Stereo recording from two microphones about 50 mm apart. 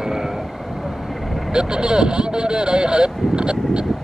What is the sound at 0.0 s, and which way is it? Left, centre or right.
Vehicle, centre.